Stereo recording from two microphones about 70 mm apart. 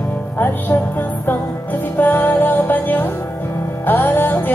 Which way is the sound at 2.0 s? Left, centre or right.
Left.